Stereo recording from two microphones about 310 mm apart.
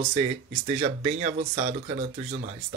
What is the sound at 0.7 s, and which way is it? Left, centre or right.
Speech, centre.